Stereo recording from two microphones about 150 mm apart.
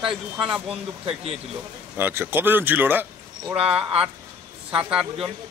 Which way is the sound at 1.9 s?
15° right (ahead or behind).